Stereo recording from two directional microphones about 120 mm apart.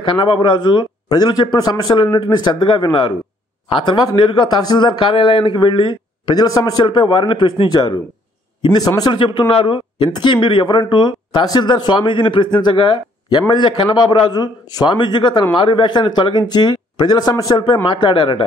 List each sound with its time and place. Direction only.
0.0 s a man's voice: 45° left (ahead or behind)
9.2 s a man's voice: 45° left (ahead or behind)